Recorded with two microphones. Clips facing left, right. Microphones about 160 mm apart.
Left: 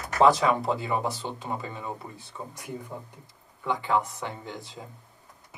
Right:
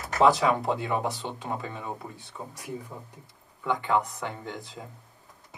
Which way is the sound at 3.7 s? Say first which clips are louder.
Even; centre (ahead or behind).